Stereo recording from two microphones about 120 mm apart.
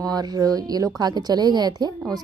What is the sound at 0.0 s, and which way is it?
A woman's voice, 30° right (ahead or behind).